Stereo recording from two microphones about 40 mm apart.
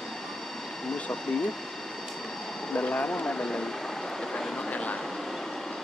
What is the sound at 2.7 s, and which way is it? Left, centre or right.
Speech, left.